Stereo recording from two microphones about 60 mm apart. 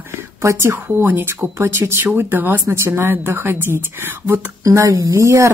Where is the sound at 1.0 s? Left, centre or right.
Right.